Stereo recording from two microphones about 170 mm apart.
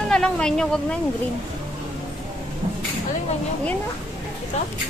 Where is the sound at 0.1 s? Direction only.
5° left (ahead or behind).